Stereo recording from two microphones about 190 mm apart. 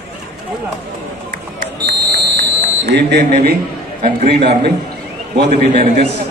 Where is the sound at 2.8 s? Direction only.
60° right (ahead or behind).